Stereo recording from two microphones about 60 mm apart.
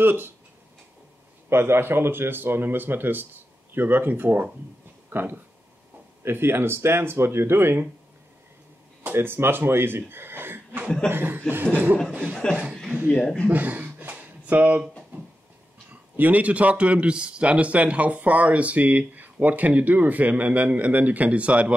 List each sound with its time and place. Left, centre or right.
0.0 s speech: right
1.5 s speech: right
9.1 s speech: right
12.1 s speech: centre
13.1 s speech: centre
13.5 s a sound: right
15.9 s speech: right